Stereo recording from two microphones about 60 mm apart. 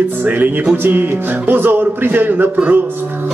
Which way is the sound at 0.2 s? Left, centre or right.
Right.